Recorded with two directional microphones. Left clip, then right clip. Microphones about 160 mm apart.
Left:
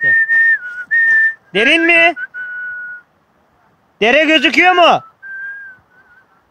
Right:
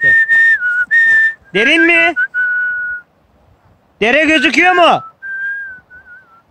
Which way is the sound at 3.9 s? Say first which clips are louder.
Even; 50° left (ahead or behind).